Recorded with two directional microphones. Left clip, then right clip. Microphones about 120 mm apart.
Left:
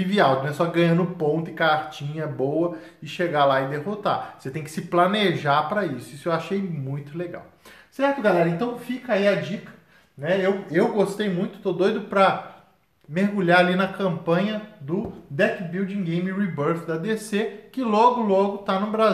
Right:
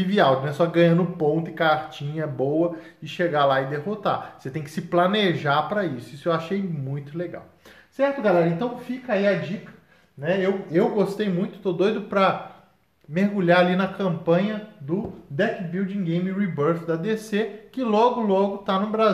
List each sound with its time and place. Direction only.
0.0 s speech: 25° right (ahead or behind)
10.2 s speech: 35° right (ahead or behind)